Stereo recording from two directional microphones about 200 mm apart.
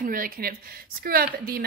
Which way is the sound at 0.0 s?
45° right (ahead or behind).